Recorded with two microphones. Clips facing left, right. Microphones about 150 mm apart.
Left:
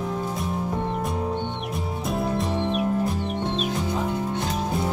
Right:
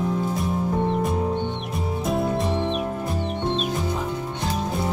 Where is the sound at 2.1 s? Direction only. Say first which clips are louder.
Right 2 dB; centre (ahead or behind).